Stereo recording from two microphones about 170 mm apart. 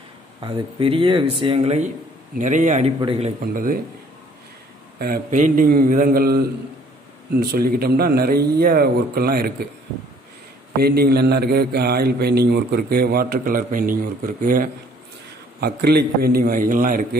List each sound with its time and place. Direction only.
0.4 s a man's voice: 35° right (ahead or behind)
3.0 s speech: 35° right (ahead or behind)
3.5 s a man's voice: 55° right (ahead or behind)
4.9 s a man's voice: 60° right (ahead or behind)
10.8 s a man's voice: 65° right (ahead or behind)
15.6 s a man's voice: 70° right (ahead or behind); by 17.2 s 55° right (ahead or behind)